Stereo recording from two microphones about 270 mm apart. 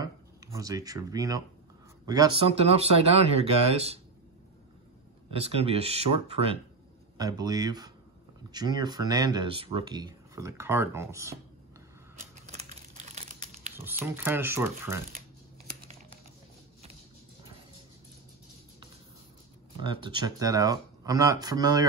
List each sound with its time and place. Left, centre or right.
0.0 s speech: centre
5.3 s speech: right
12.4 s crumpling: right
13.7 s speech: centre
19.8 s speech: centre